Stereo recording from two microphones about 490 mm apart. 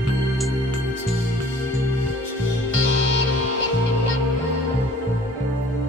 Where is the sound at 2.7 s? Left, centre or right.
Right.